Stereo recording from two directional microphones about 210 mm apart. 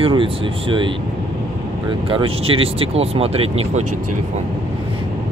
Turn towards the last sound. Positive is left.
turn(degrees=-30)  # may be behind; listen again after turning